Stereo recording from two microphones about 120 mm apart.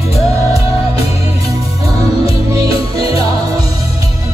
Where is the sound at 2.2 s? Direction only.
50° left (ahead or behind).